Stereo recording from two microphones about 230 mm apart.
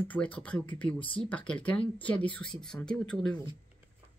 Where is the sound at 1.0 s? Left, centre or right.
Left.